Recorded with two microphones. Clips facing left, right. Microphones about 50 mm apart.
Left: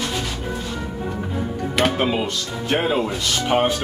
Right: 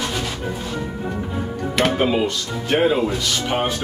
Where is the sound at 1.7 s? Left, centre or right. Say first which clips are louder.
Right 2 dB; centre.